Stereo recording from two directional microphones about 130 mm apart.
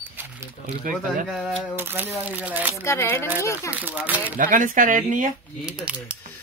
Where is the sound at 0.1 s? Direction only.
15° right (ahead or behind).